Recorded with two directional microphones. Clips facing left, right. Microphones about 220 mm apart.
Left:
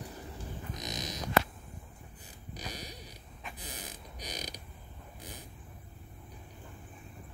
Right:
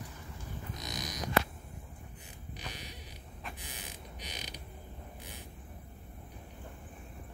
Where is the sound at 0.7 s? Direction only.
20° left (ahead or behind).